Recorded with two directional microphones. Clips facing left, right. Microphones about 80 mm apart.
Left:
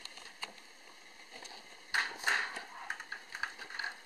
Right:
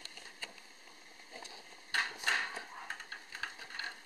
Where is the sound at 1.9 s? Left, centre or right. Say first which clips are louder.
Left 1 dB; centre.